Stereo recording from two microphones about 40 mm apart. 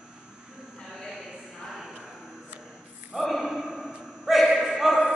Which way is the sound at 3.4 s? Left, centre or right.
Centre.